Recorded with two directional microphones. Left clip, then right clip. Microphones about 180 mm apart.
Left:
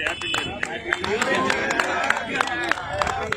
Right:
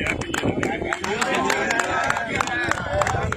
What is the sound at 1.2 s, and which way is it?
Music, 55° right (ahead or behind).